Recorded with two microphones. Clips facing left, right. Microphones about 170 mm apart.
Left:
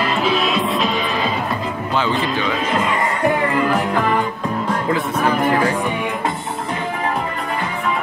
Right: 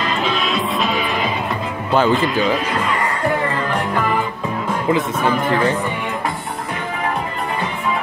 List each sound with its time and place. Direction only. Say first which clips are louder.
0.2 s music: left 2 dB; 5° left (ahead or behind)
2.0 s speech: right 5 dB; 45° right (ahead or behind)